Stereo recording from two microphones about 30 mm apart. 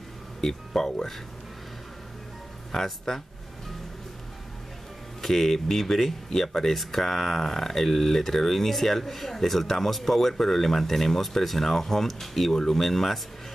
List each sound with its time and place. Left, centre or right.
0.4 s speech: centre
2.7 s speech: centre
5.2 s speech: centre